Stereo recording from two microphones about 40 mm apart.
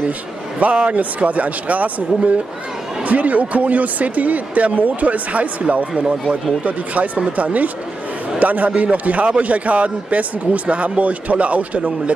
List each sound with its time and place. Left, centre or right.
0.6 s a man's voice: right
7.3 s a man's voice: right